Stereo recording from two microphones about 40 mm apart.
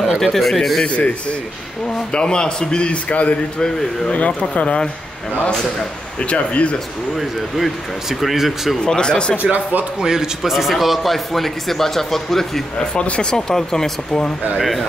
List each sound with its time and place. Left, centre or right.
0.2 s speech: centre
0.8 s a man's voice: left
3.5 s a man's voice: centre
4.1 s speech: left
6.2 s speech: left
7.2 s speech: centre
8.8 s a man's voice: left
9.4 s speech: right
9.9 s a man's voice: centre
10.5 s speech: centre
12.7 s a man's voice: left
13.3 s speech: centre